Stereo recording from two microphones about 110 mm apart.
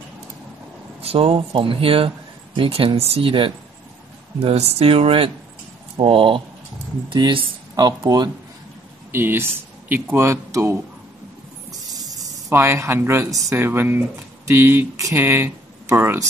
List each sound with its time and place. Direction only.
1.0 s speech: 60° right (ahead or behind)
4.4 s speech: 65° right (ahead or behind); by 8.3 s 40° right (ahead or behind)
9.1 s speech: 20° right (ahead or behind)
11.7 s snake: 35° right (ahead or behind)
12.5 s speech: 25° right (ahead or behind)